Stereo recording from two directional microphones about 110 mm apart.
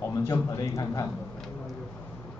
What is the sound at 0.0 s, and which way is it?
A man's voice, 25° left (ahead or behind).